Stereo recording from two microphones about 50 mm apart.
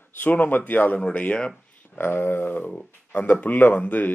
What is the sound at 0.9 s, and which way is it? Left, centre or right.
Speech, left.